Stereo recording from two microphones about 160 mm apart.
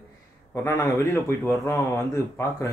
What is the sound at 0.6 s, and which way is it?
A man's voice, 15° left (ahead or behind).